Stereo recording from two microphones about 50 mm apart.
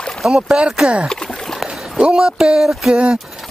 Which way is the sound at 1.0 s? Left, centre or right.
Centre.